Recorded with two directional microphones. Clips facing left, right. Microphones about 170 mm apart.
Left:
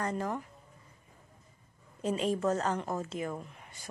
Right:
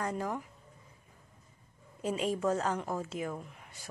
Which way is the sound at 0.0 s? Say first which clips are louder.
Left 1 dB; 5° right (ahead or behind).